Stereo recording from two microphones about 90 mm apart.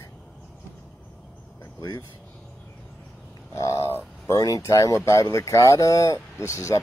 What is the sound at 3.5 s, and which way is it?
Speech, 40° left (ahead or behind).